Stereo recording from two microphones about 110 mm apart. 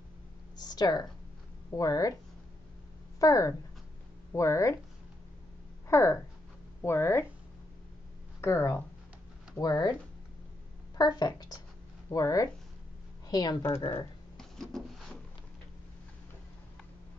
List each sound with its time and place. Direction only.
0.6 s a sound: 35° left (ahead or behind)
1.8 s a woman's voice: 30° left (ahead or behind)
3.2 s speech: 30° left (ahead or behind)
5.9 s speech: 25° left (ahead or behind)
8.4 s speech: 20° left (ahead or behind)
9.6 s a woman's voice: 40° left (ahead or behind)
11.0 s a woman's voice: 40° left (ahead or behind)
13.6 s speech: 20° left (ahead or behind)
14.3 s a sound: 5° left (ahead or behind)